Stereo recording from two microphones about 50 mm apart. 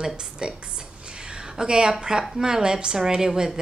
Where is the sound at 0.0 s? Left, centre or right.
Centre.